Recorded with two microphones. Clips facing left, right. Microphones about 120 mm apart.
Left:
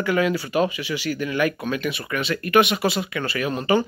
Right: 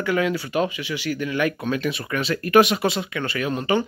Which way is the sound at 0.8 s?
20° right (ahead or behind).